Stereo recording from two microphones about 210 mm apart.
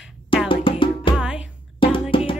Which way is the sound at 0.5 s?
25° left (ahead or behind).